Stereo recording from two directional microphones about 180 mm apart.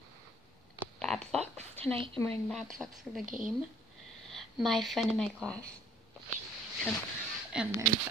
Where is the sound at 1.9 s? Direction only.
10° left (ahead or behind).